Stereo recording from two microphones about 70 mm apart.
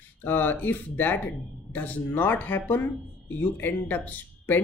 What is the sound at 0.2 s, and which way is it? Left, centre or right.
Speech, left.